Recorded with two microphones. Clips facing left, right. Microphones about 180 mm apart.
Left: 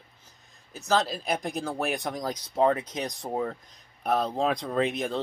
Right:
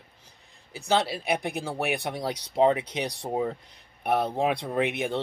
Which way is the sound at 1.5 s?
10° right (ahead or behind).